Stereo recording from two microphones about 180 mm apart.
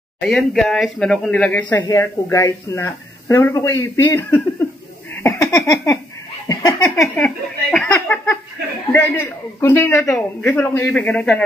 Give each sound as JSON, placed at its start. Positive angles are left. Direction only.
{"t": 0.2, "sound": "a woman's voice", "side_deg": 5}
{"t": 5.1, "sound": "a sound", "side_deg": 15}
{"t": 8.9, "sound": "a woman's voice", "side_deg": 15}